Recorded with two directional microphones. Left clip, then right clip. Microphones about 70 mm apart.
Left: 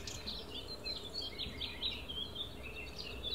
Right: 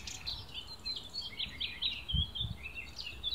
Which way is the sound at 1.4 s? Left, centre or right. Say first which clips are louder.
Right 6 dB; right.